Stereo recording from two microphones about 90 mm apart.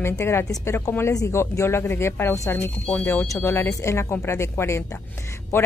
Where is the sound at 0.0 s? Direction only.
30° left (ahead or behind).